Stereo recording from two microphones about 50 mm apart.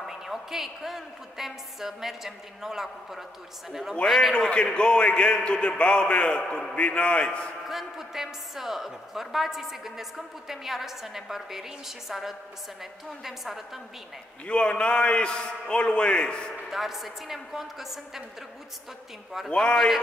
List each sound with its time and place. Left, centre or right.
0.0 s a woman's voice: centre
4.0 s a woman's voice: centre
4.3 s a man's voice: centre
7.6 s a woman's voice: centre
14.4 s a man's voice: left
16.7 s a woman's voice: centre
19.5 s a man's voice: centre